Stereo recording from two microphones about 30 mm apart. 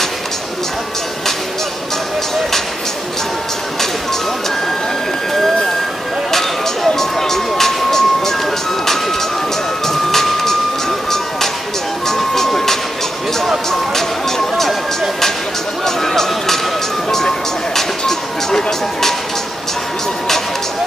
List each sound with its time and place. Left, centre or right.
7.0 s vehicle: centre
9.8 s music: centre
12.2 s vehicle: centre
15.8 s music: centre
17.7 s music: centre